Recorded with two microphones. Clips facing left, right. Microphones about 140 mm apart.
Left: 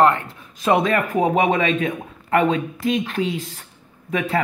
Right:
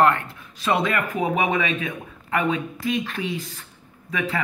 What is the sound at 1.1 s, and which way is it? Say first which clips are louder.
Speech: left 5 dB; 35° left (ahead or behind).